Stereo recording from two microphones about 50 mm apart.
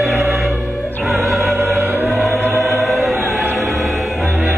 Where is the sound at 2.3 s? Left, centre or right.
Right.